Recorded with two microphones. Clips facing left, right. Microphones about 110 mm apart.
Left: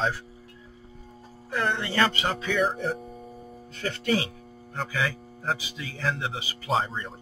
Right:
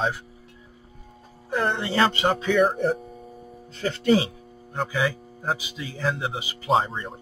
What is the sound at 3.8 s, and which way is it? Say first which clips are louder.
Speech: right 6 dB; 30° right (ahead or behind).